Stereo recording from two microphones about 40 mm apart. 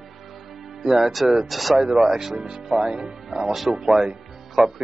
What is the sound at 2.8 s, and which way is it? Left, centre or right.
Speech, right.